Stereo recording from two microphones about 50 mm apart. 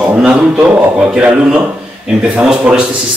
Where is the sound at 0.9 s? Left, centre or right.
Centre.